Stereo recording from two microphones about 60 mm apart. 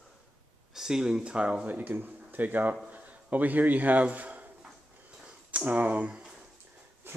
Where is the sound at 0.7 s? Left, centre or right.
Centre; by 6.0 s right.